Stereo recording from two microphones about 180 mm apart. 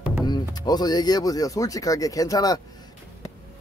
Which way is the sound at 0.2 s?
20° left (ahead or behind).